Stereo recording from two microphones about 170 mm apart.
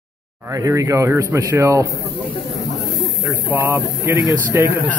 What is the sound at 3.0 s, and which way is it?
Speech, 10° right (ahead or behind).